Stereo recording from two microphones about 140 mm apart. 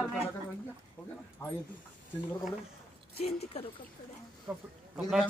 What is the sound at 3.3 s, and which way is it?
Speech, 50° left (ahead or behind).